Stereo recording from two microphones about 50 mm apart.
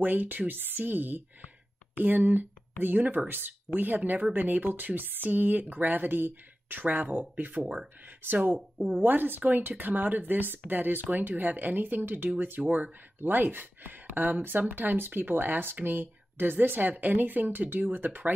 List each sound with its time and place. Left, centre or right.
0.0 s speech: right
8.7 s speech: right